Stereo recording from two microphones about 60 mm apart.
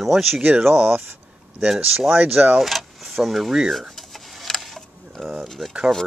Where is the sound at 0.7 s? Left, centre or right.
Right.